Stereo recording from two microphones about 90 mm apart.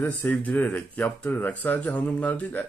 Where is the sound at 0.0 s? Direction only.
20° left (ahead or behind).